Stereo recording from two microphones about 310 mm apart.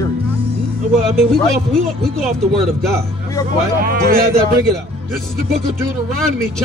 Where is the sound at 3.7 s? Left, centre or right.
Right.